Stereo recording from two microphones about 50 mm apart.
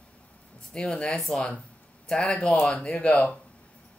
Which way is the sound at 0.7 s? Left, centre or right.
Left.